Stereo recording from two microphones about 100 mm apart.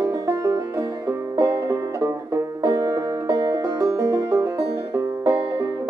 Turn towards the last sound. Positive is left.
turn(degrees=-30)  # may be behind; listen again after turning